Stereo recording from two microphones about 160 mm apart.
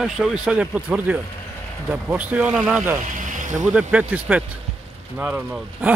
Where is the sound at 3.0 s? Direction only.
55° right (ahead or behind).